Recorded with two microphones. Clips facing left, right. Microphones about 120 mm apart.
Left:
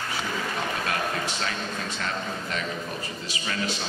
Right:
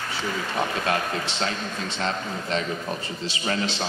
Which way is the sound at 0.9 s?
30° right (ahead or behind).